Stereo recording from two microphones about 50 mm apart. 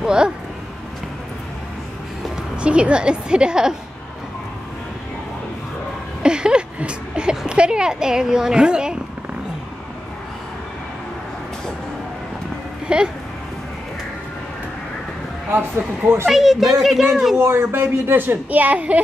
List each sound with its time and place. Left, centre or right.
0.0 s speech: centre
2.5 s a woman's voice: right
6.2 s speech: centre
12.8 s a sound: centre
16.3 s speech: centre
17.4 s speech: right
18.5 s a woman's voice: right